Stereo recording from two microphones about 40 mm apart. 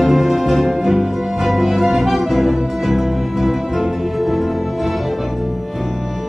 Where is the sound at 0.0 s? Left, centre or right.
Centre.